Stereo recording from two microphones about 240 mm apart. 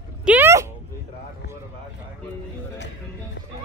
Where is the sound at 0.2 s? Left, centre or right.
Centre.